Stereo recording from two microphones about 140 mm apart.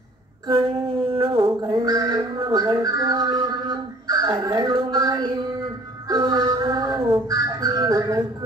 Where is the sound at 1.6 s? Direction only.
25° right (ahead or behind).